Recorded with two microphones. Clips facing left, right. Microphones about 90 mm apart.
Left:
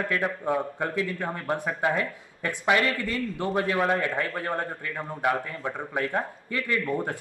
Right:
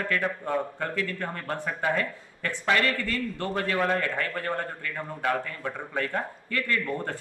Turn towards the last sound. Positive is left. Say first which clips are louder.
# left 2 dB
turn(degrees=15)  # may be behind; listen again after turning